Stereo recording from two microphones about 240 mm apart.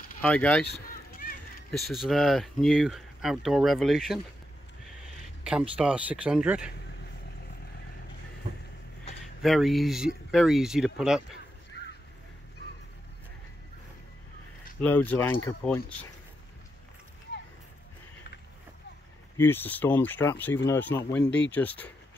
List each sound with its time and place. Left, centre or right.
0.2 s speech: centre
1.7 s speech: centre
5.4 s speech: centre
9.4 s speech: centre
14.8 s speech: centre
19.3 s speech: centre